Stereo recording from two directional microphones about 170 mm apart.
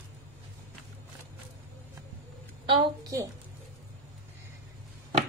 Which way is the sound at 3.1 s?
20° right (ahead or behind).